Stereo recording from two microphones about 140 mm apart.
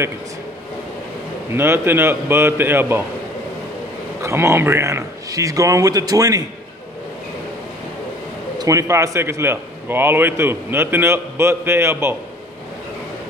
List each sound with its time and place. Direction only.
1.6 s a man's voice: 15° right (ahead or behind)
4.2 s a man's voice: 20° right (ahead or behind)
8.5 s a man's voice: 25° right (ahead or behind)